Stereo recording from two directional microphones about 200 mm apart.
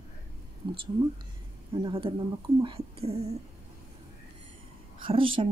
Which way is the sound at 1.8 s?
25° right (ahead or behind).